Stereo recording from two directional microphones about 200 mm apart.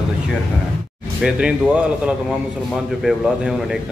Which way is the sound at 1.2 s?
5° right (ahead or behind).